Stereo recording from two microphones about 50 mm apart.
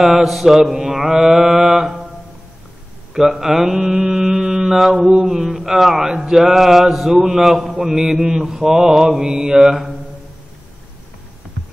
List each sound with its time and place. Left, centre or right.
0.0 s mantra: centre
0.8 s mantra: centre
3.1 s mantra: centre
4.1 s a sound: centre
4.6 s mantra: centre